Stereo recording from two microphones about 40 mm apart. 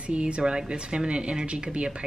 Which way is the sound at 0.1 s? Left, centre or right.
Right.